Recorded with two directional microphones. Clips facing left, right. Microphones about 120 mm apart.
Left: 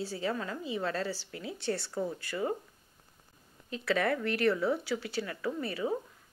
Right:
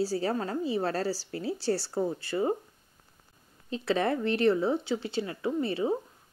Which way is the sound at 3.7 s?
25° right (ahead or behind).